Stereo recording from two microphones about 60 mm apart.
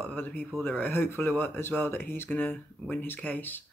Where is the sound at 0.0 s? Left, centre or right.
Left.